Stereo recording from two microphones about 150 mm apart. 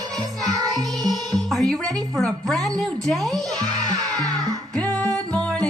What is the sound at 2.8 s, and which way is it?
Speech, centre (ahead or behind).